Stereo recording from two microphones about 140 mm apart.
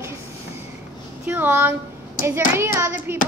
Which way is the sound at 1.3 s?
15° right (ahead or behind).